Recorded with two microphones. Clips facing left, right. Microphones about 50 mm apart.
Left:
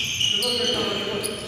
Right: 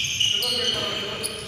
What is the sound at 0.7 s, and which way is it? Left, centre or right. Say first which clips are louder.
Basketball bounce: left 2 dB; centre.